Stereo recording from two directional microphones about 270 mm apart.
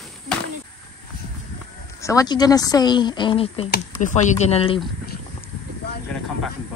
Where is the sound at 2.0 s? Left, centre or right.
Centre.